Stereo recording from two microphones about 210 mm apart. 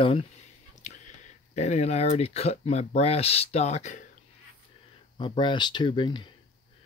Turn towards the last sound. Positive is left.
turn(degrees=20)  # may be behind; listen again after turning